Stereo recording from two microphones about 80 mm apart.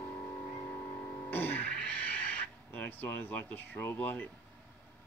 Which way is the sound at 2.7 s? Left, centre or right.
Left.